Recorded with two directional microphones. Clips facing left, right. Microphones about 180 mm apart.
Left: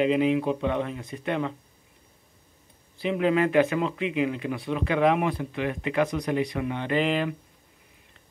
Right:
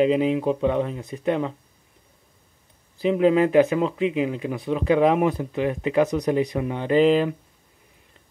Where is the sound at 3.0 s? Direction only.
35° right (ahead or behind).